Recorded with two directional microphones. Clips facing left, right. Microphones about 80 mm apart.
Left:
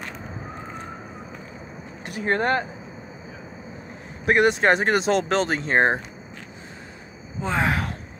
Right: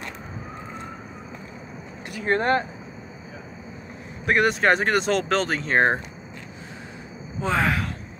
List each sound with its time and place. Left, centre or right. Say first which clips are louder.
2.0 s speech: even; left
4.3 s speech: left 1 dB; centre
7.6 s speech: even; left